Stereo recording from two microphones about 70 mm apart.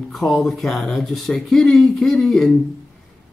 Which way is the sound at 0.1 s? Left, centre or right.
Centre.